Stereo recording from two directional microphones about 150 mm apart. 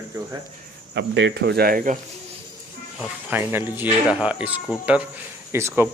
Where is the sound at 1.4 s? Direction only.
90° right; by 2.0 s 70° right (ahead or behind).